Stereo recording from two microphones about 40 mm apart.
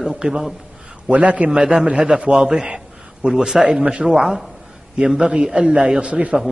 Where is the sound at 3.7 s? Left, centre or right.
Right.